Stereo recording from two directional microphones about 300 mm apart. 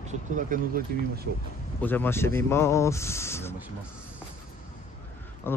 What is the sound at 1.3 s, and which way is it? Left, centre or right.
Speech, right.